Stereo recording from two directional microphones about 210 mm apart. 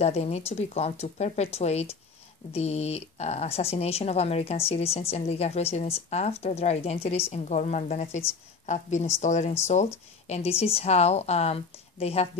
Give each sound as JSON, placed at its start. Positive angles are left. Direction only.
{"t": 0.0, "sound": "speech", "side_deg": 30}